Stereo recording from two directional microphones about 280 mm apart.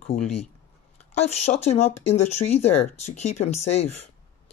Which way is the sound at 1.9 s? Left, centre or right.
Left.